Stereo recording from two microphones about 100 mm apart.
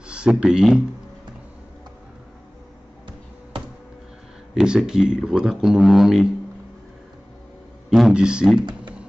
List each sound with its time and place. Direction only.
0.0 s speech: 10° right (ahead or behind)
4.6 s speech: 5° right (ahead or behind)
7.9 s speech: 5° right (ahead or behind)
8.5 s speech: 50° right (ahead or behind)